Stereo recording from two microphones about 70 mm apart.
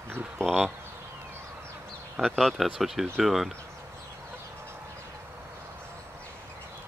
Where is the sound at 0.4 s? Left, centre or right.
Centre.